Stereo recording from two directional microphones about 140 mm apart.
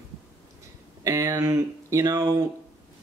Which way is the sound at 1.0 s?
25° right (ahead or behind).